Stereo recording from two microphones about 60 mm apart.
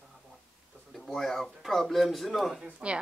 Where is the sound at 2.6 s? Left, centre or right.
Right.